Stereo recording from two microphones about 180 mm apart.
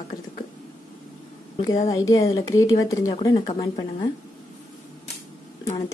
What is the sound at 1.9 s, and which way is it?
Speech, 20° left (ahead or behind).